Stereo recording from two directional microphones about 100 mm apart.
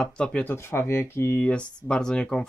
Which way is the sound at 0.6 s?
25° left (ahead or behind).